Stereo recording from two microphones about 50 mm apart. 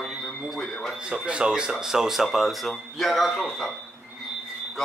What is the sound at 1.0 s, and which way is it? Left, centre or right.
A man's voice, centre.